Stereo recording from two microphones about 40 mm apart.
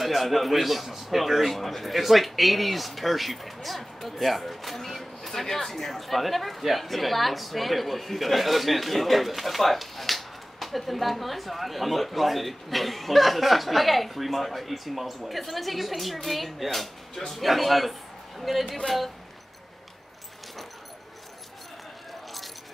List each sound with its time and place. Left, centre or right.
0.0 s speech: centre